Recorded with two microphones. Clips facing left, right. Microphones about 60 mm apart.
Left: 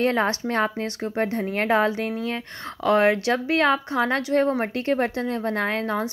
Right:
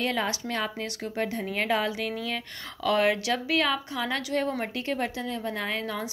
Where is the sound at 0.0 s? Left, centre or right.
Left.